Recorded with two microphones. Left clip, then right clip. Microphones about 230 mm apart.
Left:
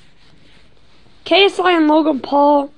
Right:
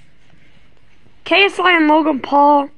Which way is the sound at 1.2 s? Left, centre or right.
Centre.